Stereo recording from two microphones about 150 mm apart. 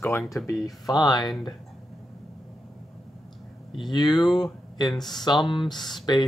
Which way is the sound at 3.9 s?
30° left (ahead or behind).